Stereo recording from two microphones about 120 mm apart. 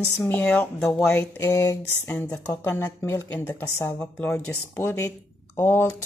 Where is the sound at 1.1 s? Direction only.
25° left (ahead or behind).